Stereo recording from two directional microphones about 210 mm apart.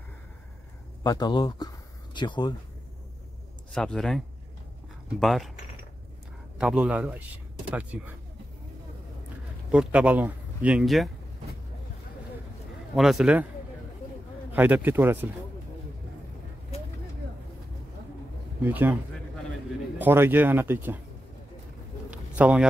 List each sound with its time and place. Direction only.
1.0 s speech: 20° left (ahead or behind)
3.7 s a man's voice: 5° left (ahead or behind)
5.2 s a man's voice: centre (ahead or behind)
6.6 s speech: 5° right (ahead or behind)
9.7 s speech: 5° right (ahead or behind)
12.9 s a man's voice: centre (ahead or behind)
14.5 s speech: 10° right (ahead or behind)
18.6 s speech: 10° right (ahead or behind)
20.0 s speech: 10° right (ahead or behind)
22.1 s a sound: 5° right (ahead or behind)